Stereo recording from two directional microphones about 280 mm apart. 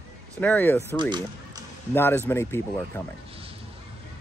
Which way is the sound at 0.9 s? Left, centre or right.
Centre.